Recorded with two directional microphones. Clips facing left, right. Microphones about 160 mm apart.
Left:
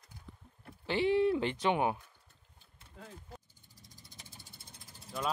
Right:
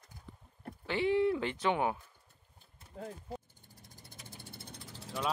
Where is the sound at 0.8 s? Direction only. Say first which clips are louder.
Left 1 dB; 25° left (ahead or behind).